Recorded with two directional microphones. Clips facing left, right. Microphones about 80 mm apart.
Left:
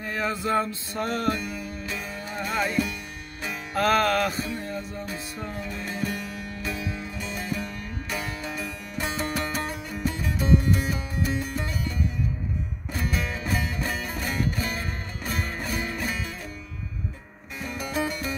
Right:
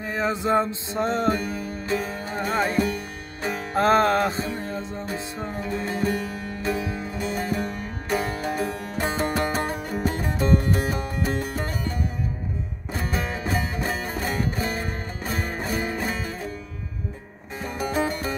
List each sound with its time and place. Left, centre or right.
0.0 s music: right
1.4 s music: right
17.6 s music: right